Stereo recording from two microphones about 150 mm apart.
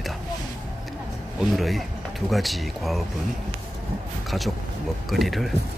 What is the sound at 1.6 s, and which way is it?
Speech, centre (ahead or behind).